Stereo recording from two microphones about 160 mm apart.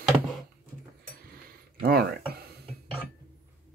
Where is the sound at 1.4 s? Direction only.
70° right (ahead or behind).